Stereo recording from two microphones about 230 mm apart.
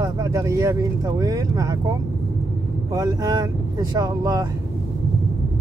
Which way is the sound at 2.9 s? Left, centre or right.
Centre.